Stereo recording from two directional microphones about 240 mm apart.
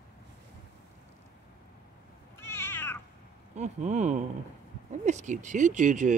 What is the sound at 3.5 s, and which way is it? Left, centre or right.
Speech, right.